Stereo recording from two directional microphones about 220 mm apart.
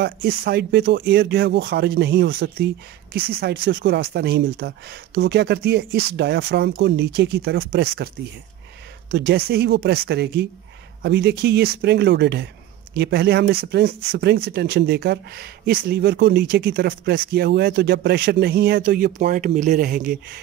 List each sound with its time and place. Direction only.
0.0 s speech: 45° right (ahead or behind)
9.1 s speech: 45° right (ahead or behind)